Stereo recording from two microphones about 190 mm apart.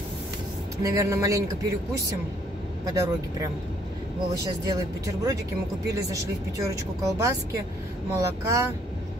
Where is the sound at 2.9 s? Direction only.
15° right (ahead or behind).